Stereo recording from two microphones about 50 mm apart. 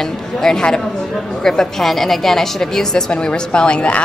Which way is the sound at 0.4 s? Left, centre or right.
Centre.